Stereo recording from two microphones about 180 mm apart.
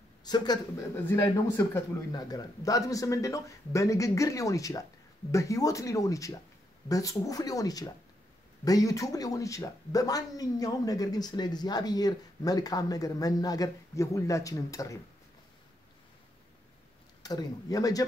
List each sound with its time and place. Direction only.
0.2 s speech: 20° left (ahead or behind)
17.2 s speech: 20° left (ahead or behind)